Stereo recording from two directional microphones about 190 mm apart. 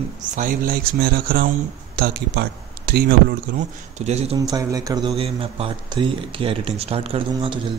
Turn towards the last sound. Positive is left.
turn(degrees=-30)  # may be behind; listen again after turning